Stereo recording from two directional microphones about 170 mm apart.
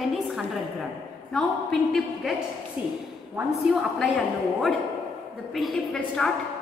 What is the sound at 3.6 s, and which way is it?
Speech, centre (ahead or behind).